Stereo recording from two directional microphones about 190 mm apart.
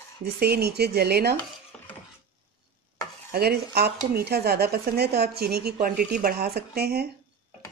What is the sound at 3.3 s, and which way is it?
Speech, 55° right (ahead or behind).